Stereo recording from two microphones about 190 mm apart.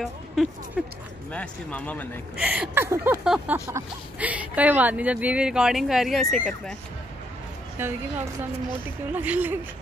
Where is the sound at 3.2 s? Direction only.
5° right (ahead or behind).